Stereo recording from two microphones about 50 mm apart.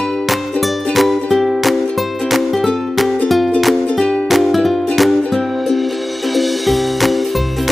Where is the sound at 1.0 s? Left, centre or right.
Centre.